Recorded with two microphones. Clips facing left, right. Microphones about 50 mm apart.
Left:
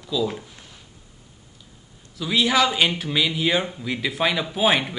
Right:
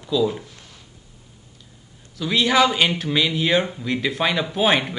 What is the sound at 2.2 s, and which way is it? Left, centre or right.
A man's voice, centre.